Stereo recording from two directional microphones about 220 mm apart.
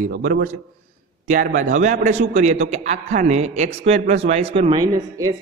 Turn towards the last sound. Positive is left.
turn(degrees=-15)  # may be behind; listen again after turning